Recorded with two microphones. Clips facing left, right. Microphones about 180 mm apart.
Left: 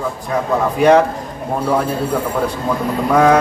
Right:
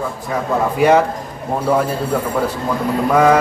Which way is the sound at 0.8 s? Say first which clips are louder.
Left 2 dB; 5° right (ahead or behind).